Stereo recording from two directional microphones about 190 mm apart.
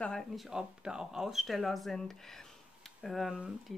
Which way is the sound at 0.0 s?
Centre (ahead or behind).